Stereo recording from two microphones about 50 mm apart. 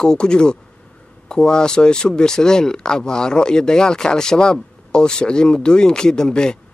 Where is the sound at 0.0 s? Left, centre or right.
Centre.